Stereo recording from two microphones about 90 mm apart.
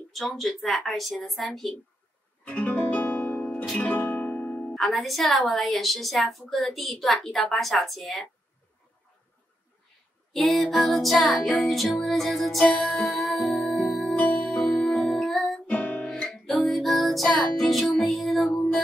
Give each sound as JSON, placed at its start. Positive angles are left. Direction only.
{"t": 0.1, "sound": "a woman's voice", "side_deg": 0}
{"t": 2.4, "sound": "music", "side_deg": 15}
{"t": 4.7, "sound": "a woman's voice", "side_deg": 0}
{"t": 10.3, "sound": "music", "side_deg": 5}
{"t": 15.6, "sound": "music", "side_deg": 15}
{"t": 16.1, "sound": "music", "side_deg": 5}